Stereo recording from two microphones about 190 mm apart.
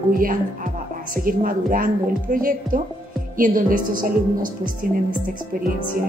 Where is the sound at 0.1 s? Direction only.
45° right (ahead or behind).